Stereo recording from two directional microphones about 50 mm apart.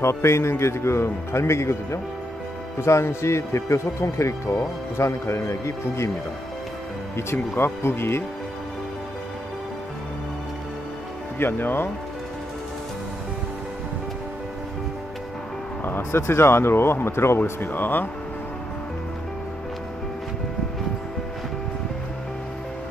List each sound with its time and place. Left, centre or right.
0.0 s speech: left
7.3 s speech: left
11.3 s speech: left
15.8 s speech: left
16.2 s speech: left
17.4 s speech: left